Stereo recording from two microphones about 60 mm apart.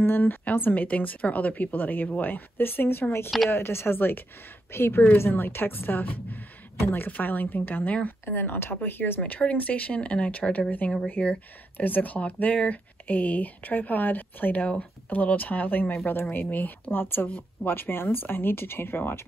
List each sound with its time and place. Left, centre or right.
0.0 s speech: left
9.2 s speech: left